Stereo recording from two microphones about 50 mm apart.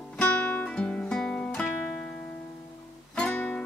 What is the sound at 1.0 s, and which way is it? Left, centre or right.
Music, centre.